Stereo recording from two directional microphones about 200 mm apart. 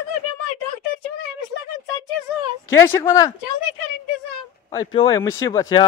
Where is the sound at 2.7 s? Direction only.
15° left (ahead or behind).